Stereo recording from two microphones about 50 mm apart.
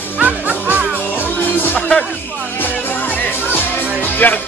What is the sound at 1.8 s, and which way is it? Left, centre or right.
Music, left.